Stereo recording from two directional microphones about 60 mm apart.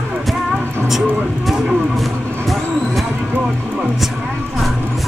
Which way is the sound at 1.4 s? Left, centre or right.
Centre.